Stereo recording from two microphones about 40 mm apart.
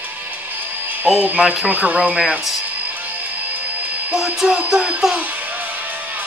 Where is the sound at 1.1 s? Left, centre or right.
Right.